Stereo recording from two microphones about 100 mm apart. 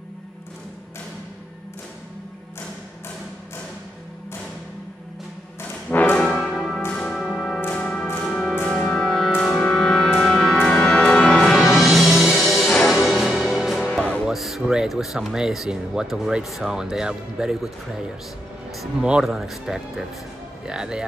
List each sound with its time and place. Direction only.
5.6 s music: 20° left (ahead or behind)
6.2 s music: centre (ahead or behind)
14.2 s speech: centre (ahead or behind)